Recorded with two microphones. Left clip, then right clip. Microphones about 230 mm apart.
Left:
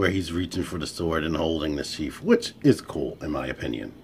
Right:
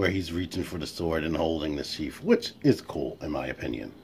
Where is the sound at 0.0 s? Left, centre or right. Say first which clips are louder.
Left 3 dB; centre.